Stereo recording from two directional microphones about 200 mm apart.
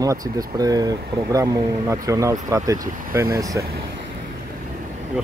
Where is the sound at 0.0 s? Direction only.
15° right (ahead or behind).